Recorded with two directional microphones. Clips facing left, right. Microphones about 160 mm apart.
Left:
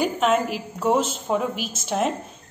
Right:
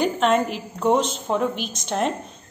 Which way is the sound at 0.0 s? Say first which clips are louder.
Right 1 dB; 5° left (ahead or behind).